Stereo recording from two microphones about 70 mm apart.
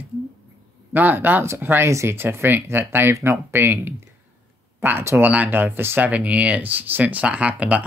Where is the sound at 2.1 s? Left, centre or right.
Right.